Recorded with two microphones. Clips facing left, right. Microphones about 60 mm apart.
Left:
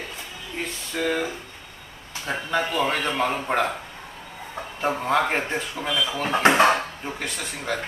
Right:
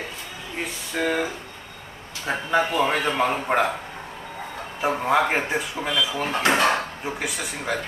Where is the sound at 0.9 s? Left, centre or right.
Centre.